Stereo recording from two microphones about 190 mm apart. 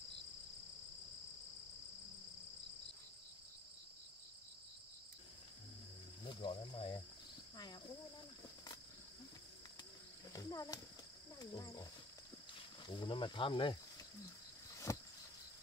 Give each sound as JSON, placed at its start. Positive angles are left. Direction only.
{"t": 6.2, "sound": "speech", "side_deg": 25}
{"t": 10.3, "sound": "speech", "side_deg": 20}
{"t": 14.9, "sound": "vehicle", "side_deg": 15}